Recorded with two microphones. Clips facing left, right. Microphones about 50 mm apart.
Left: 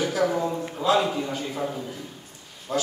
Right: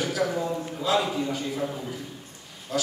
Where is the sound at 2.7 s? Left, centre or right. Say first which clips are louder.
Left 2 dB; left.